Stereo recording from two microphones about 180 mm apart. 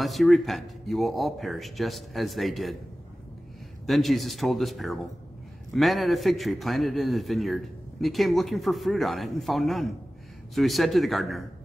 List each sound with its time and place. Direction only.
0.0 s a man's voice: centre (ahead or behind)
3.8 s a man's voice: centre (ahead or behind)